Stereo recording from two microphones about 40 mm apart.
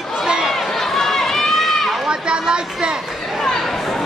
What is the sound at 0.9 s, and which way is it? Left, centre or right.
Run, centre.